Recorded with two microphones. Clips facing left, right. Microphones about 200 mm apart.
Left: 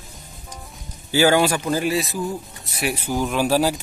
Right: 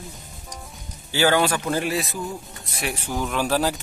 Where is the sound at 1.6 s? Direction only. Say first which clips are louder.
Left 3 dB; centre (ahead or behind).